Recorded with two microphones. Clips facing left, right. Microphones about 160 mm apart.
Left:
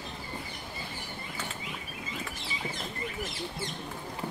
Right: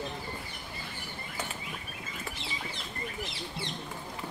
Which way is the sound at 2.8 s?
45° left (ahead or behind).